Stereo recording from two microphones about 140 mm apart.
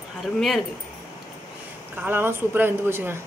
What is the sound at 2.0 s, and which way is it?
Speech, 15° right (ahead or behind).